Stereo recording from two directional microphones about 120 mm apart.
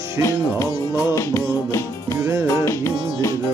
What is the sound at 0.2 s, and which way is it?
Music, 25° left (ahead or behind).